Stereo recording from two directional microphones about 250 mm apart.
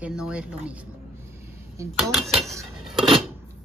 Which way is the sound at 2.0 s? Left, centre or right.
Centre.